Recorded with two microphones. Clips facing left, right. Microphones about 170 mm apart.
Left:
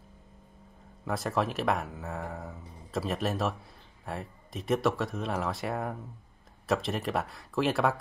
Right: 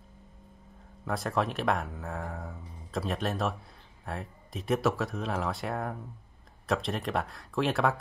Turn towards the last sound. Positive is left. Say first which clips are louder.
# left 1 dB
turn(degrees=0)  # may be behind; listen again after turning